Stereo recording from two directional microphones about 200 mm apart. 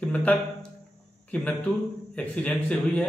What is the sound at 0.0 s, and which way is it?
A man's voice, 5° left (ahead or behind).